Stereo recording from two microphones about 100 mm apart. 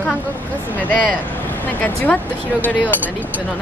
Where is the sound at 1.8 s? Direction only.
15° left (ahead or behind).